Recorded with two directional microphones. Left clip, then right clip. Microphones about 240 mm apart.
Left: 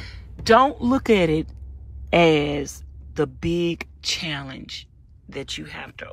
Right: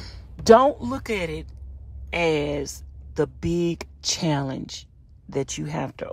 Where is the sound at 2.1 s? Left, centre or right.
Centre.